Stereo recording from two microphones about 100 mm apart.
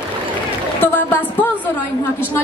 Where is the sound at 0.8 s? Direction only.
15° left (ahead or behind).